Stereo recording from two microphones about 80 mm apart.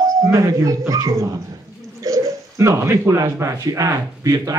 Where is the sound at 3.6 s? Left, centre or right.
Right.